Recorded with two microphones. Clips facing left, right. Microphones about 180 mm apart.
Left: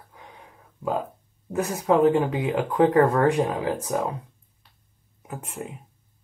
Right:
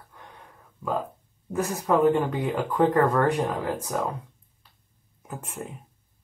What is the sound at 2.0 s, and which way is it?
Speech, 5° left (ahead or behind).